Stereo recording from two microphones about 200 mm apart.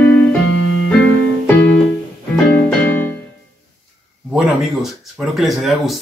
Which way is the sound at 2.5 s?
5° left (ahead or behind).